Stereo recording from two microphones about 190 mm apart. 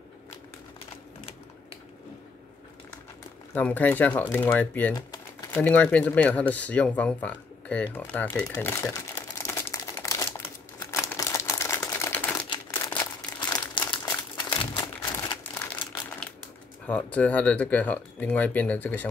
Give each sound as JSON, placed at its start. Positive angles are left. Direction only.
{"t": 3.5, "sound": "speech", "side_deg": 10}
{"t": 8.5, "sound": "crumpling", "side_deg": 15}
{"t": 10.9, "sound": "camera", "side_deg": 15}
{"t": 12.7, "sound": "crumpling", "side_deg": 15}
{"t": 15.5, "sound": "crumpling", "side_deg": 10}
{"t": 16.8, "sound": "speech", "side_deg": 5}